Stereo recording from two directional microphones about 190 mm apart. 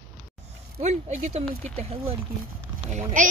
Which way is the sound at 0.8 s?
35° right (ahead or behind).